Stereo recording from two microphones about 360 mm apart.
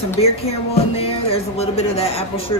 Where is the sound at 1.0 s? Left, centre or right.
Centre.